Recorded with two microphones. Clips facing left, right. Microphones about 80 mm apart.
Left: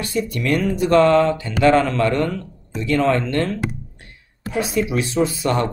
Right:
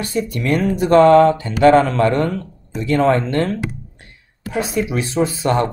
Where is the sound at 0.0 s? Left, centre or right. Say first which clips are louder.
Right 1 dB; right.